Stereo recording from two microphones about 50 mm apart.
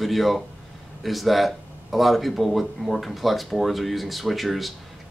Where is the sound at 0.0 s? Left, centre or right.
Centre.